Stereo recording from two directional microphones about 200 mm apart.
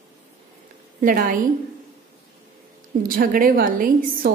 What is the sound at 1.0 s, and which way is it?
Speech, 45° right (ahead or behind).